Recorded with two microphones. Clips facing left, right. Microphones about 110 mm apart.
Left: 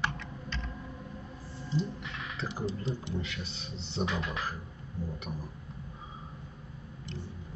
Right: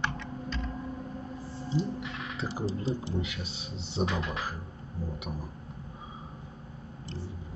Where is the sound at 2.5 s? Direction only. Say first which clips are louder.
Right 2 dB; 35° right (ahead or behind).